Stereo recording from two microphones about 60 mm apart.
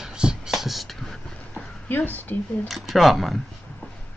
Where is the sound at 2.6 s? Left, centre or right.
Centre.